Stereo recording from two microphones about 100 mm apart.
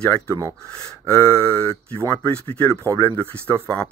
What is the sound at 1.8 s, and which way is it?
Speech, 15° left (ahead or behind).